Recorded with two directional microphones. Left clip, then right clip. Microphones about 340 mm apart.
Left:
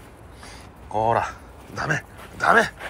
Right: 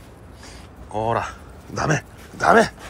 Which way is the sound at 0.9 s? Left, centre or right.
Centre.